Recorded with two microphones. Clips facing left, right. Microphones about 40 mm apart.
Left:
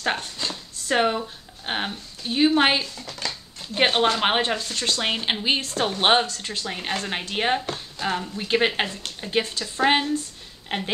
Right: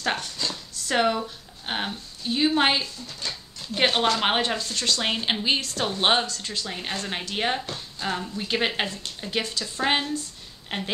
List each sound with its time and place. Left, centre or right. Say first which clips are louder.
0.2 s speech: even; centre
5.0 s speech: left 2 dB; centre
5.6 s speech: left 3 dB; left
5.9 s speech: left 3 dB; centre
6.2 s speech: left 1 dB; left
6.7 s speech: left 5 dB; centre
9.2 s speech: left 3 dB; left
10.7 s speech: left 3 dB; left